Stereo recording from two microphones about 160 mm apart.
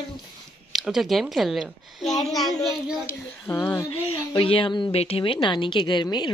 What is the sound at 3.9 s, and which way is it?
A woman's voice, 40° left (ahead or behind).